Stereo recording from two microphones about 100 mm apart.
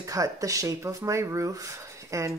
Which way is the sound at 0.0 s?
35° right (ahead or behind).